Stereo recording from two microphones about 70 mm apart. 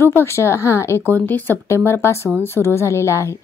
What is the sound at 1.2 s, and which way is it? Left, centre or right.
Speech, left.